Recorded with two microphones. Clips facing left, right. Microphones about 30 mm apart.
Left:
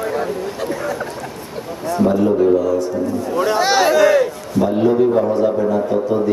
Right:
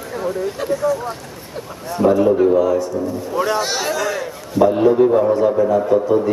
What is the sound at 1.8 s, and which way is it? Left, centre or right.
A man's voice, centre.